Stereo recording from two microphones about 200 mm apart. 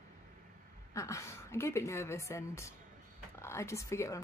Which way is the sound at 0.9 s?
15° left (ahead or behind).